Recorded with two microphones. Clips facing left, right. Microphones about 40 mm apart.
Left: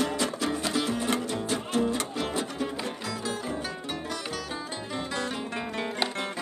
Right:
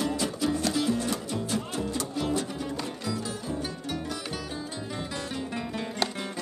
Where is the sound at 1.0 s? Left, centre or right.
Left.